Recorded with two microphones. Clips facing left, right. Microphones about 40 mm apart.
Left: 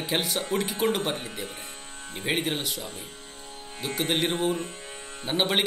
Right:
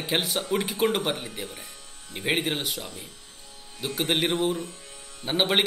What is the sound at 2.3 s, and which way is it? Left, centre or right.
Speech, centre.